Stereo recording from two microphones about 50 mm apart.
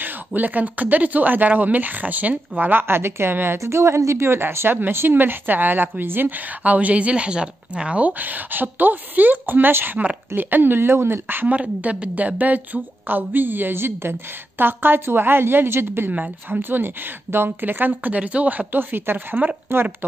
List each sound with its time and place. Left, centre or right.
0.0 s speech: right
3.5 s a woman's voice: right
4.4 s speech: right
6.6 s speech: right
8.1 s speech: right
11.4 s speech: right
16.1 s speech: right